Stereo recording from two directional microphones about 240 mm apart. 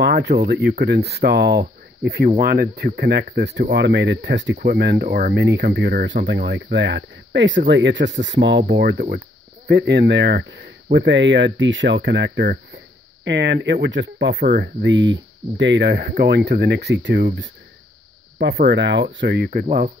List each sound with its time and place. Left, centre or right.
0.0 s speech: right